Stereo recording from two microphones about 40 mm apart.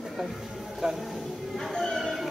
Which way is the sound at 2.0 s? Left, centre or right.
Centre.